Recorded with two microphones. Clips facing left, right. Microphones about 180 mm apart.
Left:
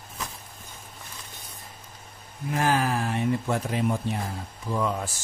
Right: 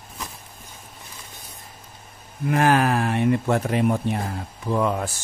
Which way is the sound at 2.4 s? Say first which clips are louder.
Right 6 dB; 65° right (ahead or behind).